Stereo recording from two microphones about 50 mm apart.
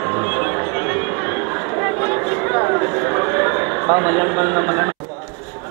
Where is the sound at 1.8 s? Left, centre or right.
Centre.